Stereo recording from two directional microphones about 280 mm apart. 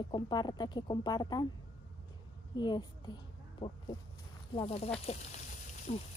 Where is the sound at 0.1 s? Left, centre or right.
Centre.